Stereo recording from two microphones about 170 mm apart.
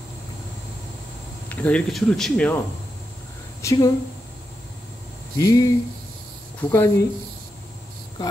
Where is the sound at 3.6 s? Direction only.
20° left (ahead or behind).